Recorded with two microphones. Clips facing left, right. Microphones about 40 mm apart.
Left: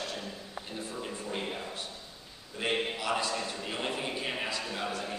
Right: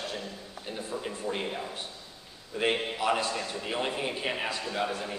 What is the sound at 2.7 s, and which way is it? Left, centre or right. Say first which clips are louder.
A man's voice: right 3 dB; centre.